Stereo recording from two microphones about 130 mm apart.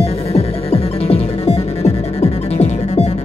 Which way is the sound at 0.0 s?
50° left (ahead or behind).